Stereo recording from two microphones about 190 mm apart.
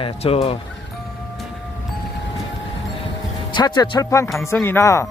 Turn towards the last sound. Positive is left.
turn(degrees=15)  # may be behind; listen again after turning